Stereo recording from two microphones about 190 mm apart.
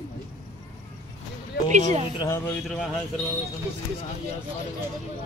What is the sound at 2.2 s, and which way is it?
Speech, 15° left (ahead or behind).